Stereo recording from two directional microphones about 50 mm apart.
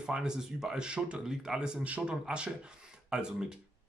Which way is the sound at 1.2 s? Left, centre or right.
Centre.